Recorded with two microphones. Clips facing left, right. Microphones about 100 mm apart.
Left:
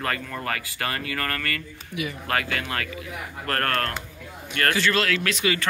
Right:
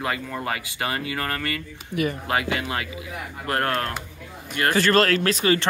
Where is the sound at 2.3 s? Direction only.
20° right (ahead or behind).